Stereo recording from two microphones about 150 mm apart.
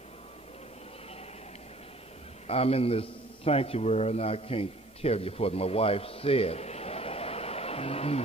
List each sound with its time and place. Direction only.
2.4 s a man's voice: 40° left (ahead or behind)